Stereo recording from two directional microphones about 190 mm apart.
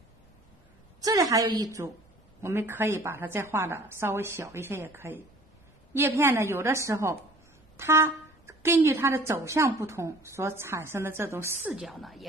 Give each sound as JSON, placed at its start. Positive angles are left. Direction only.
{"t": 1.0, "sound": "a woman's voice", "side_deg": -20}